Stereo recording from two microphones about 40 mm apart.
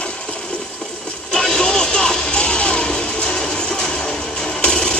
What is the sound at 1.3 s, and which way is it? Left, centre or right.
Music, centre.